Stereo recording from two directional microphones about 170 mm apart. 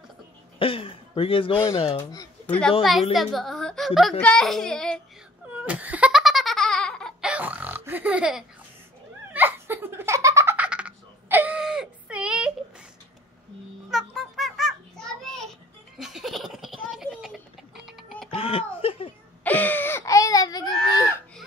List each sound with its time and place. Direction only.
0.6 s speech: 30° left (ahead or behind)
2.4 s a woman's voice: 10° left (ahead or behind)
5.7 s laughter: 10° right (ahead or behind)
13.8 s a sound: centre (ahead or behind)
16.0 s baby laughter: centre (ahead or behind)
18.3 s a sound: 35° left (ahead or behind)
19.4 s wail: 10° left (ahead or behind)